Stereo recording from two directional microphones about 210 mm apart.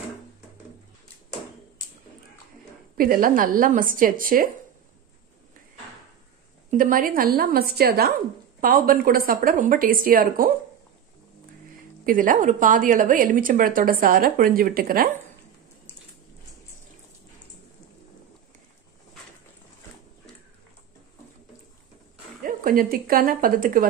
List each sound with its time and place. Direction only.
3.0 s a woman's voice: 40° right (ahead or behind)
6.7 s a woman's voice: 40° right (ahead or behind)
12.1 s a woman's voice: 40° right (ahead or behind)
22.4 s speech: 40° right (ahead or behind)